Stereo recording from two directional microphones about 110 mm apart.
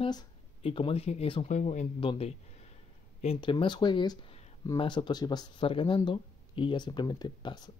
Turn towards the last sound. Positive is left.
turn(degrees=40)  # may be behind; listen again after turning